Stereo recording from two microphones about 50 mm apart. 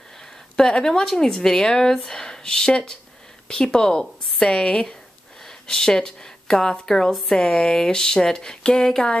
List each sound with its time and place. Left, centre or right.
0.6 s speech: centre